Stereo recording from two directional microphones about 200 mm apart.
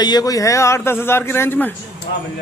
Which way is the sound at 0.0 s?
20° left (ahead or behind).